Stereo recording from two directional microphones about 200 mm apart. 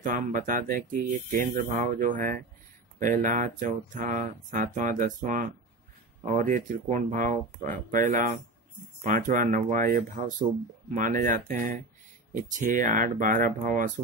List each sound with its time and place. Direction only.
0.0 s speech: 40° right (ahead or behind)